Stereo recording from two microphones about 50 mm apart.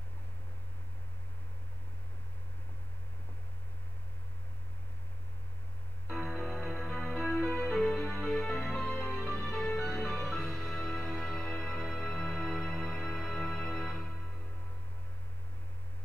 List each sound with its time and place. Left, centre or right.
6.0 s music: centre
9.3 s music: centre
9.6 s music: centre